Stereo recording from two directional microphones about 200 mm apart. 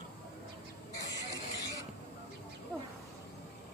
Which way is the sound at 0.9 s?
15° left (ahead or behind).